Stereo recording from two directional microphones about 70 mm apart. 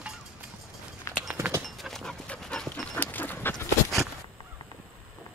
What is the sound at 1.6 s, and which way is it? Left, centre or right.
Dog, centre.